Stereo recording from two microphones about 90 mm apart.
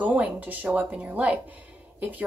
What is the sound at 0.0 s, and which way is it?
A woman's voice, 15° right (ahead or behind).